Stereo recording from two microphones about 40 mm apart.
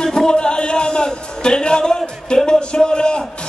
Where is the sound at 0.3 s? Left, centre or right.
Left.